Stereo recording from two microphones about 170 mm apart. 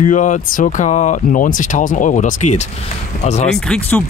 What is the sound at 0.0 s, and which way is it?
Speech, 45° left (ahead or behind).